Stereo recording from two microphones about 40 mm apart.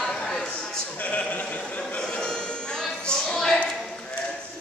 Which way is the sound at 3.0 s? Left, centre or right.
Left.